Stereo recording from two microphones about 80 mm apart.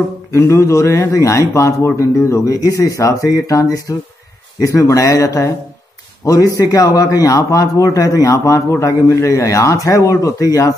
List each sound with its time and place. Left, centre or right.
0.3 s a man's voice: left